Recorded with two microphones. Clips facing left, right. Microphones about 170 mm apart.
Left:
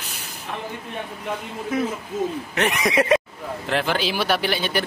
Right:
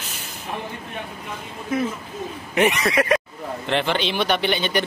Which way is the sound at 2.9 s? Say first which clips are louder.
Left 5 dB; 25° left (ahead or behind).